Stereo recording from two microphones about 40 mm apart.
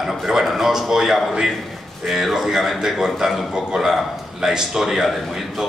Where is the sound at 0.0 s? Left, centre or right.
Centre.